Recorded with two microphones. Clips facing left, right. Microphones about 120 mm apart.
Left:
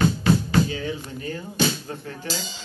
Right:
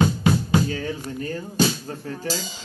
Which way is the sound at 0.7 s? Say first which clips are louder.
Right 1 dB; 45° right (ahead or behind).